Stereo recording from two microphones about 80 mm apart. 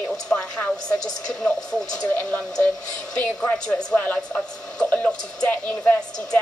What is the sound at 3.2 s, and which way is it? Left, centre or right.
A woman's voice, centre.